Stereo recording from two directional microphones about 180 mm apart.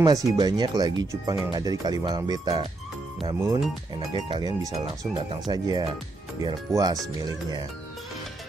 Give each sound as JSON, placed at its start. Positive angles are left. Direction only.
{"t": 0.0, "sound": "speech", "side_deg": -20}